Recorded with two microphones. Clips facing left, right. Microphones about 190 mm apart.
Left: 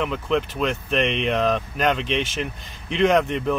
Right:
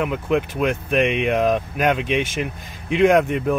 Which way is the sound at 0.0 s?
10° right (ahead or behind).